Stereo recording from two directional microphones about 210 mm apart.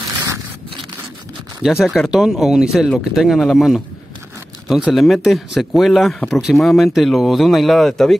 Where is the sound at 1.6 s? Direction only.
Centre (ahead or behind).